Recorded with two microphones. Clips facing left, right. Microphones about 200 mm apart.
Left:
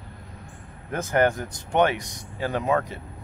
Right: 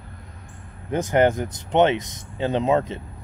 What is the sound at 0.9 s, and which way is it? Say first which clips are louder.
Speech: right 3 dB; 20° right (ahead or behind).